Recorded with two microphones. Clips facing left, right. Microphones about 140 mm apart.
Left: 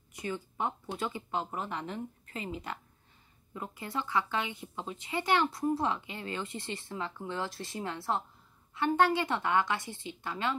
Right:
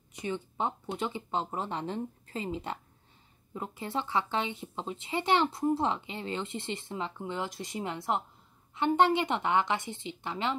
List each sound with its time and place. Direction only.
0.1 s speech: 20° right (ahead or behind)